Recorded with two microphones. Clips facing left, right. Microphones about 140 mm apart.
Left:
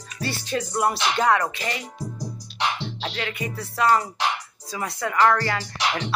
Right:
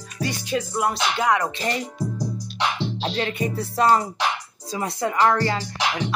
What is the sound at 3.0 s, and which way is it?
Speech, 30° right (ahead or behind).